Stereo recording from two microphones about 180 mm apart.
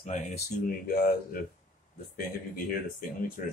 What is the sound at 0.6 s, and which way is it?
Speech, 55° left (ahead or behind).